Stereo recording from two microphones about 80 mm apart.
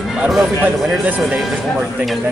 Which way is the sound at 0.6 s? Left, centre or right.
Centre.